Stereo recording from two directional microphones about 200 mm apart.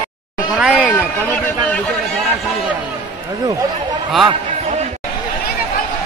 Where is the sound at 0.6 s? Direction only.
5° right (ahead or behind).